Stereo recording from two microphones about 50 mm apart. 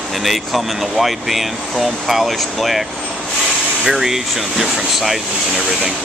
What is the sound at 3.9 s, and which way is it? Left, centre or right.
Speech, centre.